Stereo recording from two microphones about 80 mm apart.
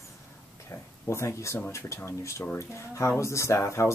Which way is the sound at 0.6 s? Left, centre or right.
Left.